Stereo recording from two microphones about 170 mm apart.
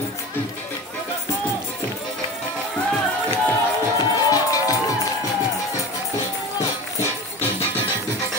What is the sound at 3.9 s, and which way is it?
Music, 20° left (ahead or behind).